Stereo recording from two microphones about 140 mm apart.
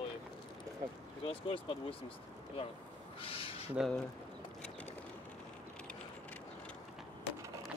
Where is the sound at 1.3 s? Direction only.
40° left (ahead or behind).